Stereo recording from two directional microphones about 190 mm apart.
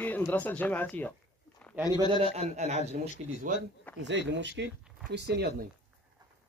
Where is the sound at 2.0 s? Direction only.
30° right (ahead or behind).